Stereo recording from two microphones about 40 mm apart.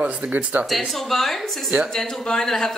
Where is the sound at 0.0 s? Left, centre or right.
Right.